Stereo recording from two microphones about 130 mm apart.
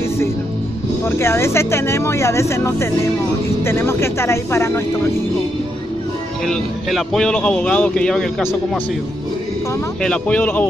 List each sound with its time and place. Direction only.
1.0 s speech: 20° left (ahead or behind)
6.4 s speech: centre (ahead or behind)
10.0 s speech: 5° left (ahead or behind)